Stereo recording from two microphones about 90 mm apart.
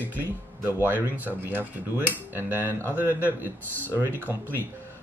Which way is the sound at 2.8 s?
25° left (ahead or behind).